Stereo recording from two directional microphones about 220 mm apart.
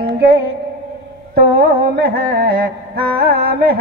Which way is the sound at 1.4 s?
45° right (ahead or behind).